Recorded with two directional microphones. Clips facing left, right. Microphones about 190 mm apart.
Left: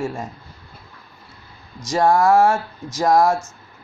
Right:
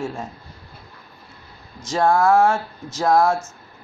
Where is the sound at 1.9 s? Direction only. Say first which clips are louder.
Left 1 dB; 15° left (ahead or behind).